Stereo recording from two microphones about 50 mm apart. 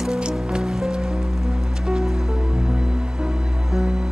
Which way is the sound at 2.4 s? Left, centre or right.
Centre.